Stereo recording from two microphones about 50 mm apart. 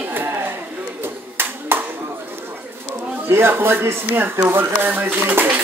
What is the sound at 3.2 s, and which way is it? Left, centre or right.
Speech, right.